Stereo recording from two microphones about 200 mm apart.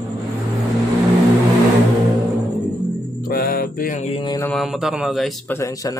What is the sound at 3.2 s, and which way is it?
Music, 45° left (ahead or behind).